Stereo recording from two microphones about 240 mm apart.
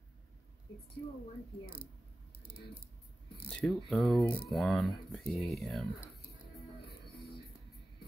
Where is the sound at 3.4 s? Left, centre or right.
Centre.